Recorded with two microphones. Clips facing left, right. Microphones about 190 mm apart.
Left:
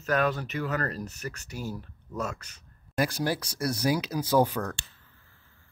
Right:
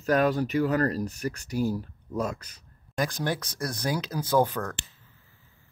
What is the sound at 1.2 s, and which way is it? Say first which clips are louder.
Speech: right 6 dB; 25° right (ahead or behind).